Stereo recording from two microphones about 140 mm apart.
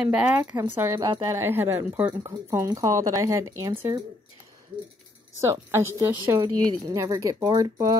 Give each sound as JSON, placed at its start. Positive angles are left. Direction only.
{"t": 0.0, "sound": "speech", "side_deg": -5}
{"t": 0.9, "sound": "a woman's voice", "side_deg": -30}
{"t": 1.3, "sound": "speech", "side_deg": -15}
{"t": 2.2, "sound": "a woman's voice", "side_deg": -25}
{"t": 5.4, "sound": "a woman's voice", "side_deg": -20}